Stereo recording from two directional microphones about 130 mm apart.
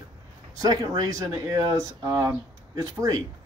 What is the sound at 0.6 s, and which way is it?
Speech, 30° right (ahead or behind).